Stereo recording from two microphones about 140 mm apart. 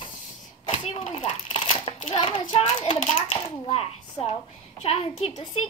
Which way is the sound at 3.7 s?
50° left (ahead or behind).